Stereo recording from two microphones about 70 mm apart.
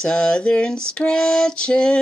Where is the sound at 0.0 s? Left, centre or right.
Centre.